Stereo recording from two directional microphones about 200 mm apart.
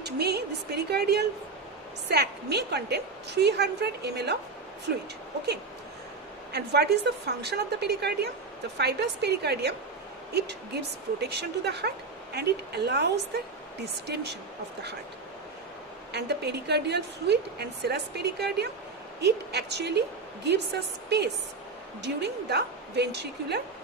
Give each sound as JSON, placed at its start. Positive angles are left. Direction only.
{"t": 0.0, "sound": "a woman's voice", "side_deg": -55}
{"t": 6.5, "sound": "a woman's voice", "side_deg": -55}
{"t": 16.1, "sound": "a woman's voice", "side_deg": -55}
{"t": 22.0, "sound": "a woman's voice", "side_deg": -55}